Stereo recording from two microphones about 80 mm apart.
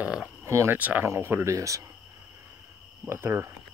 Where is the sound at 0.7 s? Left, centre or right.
Right.